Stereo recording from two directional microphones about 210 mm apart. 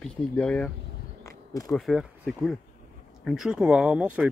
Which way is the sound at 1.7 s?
Centre (ahead or behind).